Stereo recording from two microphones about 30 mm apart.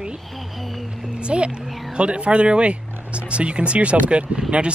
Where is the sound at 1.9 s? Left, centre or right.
Right.